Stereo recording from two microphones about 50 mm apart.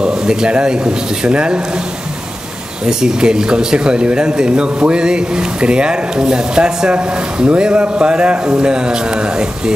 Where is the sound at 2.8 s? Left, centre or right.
Centre.